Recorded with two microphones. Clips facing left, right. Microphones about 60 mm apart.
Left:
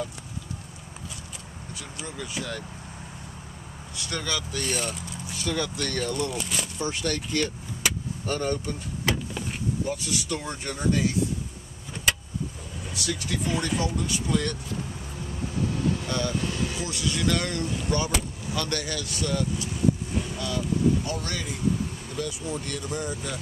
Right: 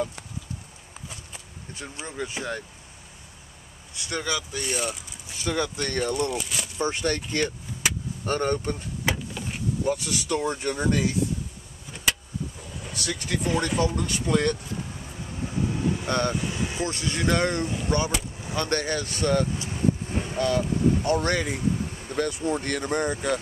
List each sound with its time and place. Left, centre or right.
1.8 s speech: right
3.9 s speech: right; by 5.0 s centre
5.3 s speech: centre
6.3 s speech: centre
6.8 s speech: right
9.1 s a sound: centre
10.3 s speech: right
11.9 s vehicle: centre
12.9 s speech: right
15.7 s vehicle: centre
16.1 s speech: right
16.3 s vehicle: centre
16.8 s speech: right